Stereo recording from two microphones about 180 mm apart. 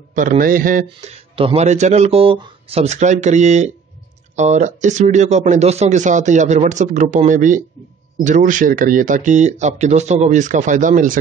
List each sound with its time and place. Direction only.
0.1 s speech: 45° right (ahead or behind)
1.1 s speech: 30° right (ahead or behind); by 11.1 s 45° right (ahead or behind)